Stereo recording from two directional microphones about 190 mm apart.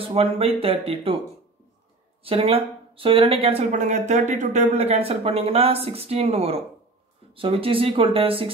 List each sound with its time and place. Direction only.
0.0 s speech: 30° right (ahead or behind)
2.2 s speech: 30° right (ahead or behind)